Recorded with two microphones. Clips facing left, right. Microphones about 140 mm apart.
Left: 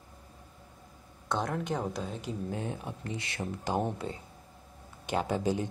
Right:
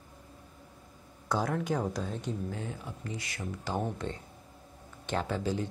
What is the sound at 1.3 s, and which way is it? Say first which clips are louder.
Speech: right 1 dB; 5° right (ahead or behind).